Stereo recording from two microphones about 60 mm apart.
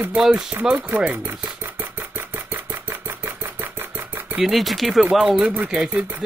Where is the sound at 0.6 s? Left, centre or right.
Right.